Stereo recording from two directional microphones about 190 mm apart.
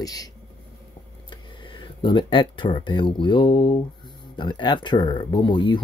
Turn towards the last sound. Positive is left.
turn(degrees=25)  # may be behind; listen again after turning